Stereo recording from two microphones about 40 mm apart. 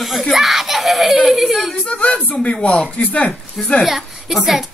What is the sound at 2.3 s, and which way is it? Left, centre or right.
Speech, left.